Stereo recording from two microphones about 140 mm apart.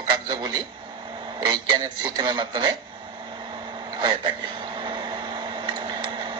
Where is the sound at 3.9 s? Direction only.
35° right (ahead or behind).